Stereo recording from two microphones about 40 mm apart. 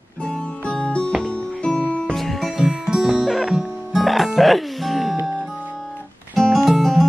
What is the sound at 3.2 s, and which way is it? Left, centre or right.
Music, centre.